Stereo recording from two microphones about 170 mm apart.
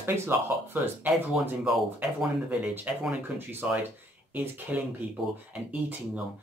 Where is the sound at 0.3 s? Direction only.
15° right (ahead or behind).